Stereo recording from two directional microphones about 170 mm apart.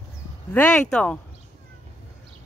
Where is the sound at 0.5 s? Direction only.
5° left (ahead or behind).